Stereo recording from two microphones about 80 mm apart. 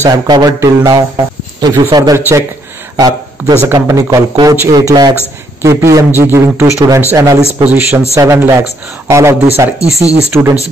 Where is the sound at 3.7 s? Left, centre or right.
Right.